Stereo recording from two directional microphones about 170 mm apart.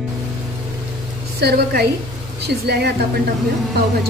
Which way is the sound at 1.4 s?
75° right (ahead or behind).